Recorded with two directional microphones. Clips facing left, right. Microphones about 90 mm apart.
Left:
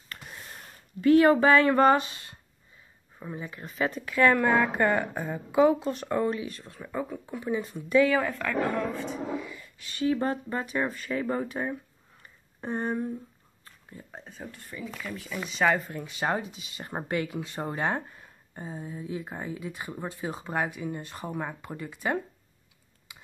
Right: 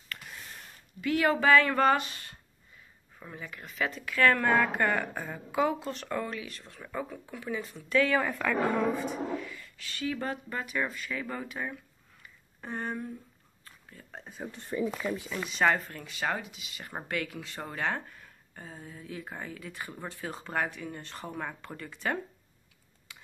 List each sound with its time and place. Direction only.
1.0 s speech: 30° left (ahead or behind)
4.1 s a woman's voice: 15° left (ahead or behind)
6.6 s a woman's voice: 10° left (ahead or behind)
8.2 s a woman's voice: 5° right (ahead or behind)
9.3 s speech: 15° left (ahead or behind)
14.1 s a woman's voice: 5° right (ahead or behind)
14.5 s speech: 30° right (ahead or behind)
15.0 s speech: 15° right (ahead or behind)
15.3 s a woman's voice: centre (ahead or behind)
15.9 s speech: 20° left (ahead or behind)
23.1 s a sound: 15° left (ahead or behind)